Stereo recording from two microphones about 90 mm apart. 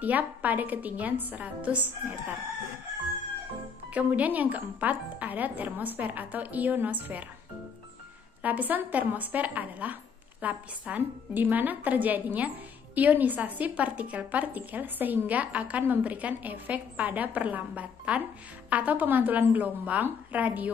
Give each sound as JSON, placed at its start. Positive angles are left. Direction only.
{"t": 0.0, "sound": "a woman's voice", "side_deg": -20}
{"t": 3.9, "sound": "a woman's voice", "side_deg": -15}
{"t": 8.4, "sound": "a woman's voice", "side_deg": -20}